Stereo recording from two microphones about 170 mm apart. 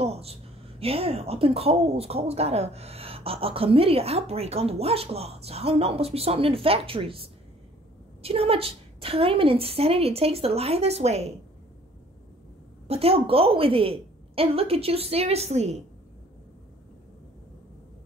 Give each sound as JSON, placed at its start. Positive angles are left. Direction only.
{"t": 0.0, "sound": "a woman's voice", "side_deg": -35}
{"t": 12.8, "sound": "a woman's voice", "side_deg": -35}